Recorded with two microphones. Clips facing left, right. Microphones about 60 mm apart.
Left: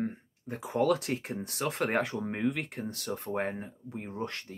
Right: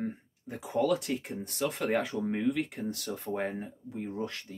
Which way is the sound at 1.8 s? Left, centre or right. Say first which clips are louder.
Even; left.